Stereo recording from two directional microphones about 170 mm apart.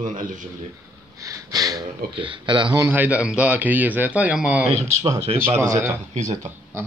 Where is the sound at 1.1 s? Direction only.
20° right (ahead or behind).